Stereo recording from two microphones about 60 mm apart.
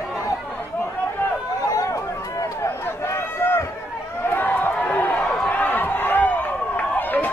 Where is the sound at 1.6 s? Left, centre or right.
Left.